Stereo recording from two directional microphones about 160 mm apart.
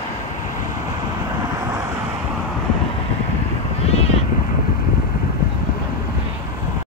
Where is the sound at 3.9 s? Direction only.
40° left (ahead or behind).